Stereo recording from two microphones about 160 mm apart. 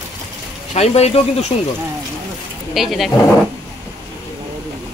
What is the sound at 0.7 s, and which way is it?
Speech, 40° left (ahead or behind).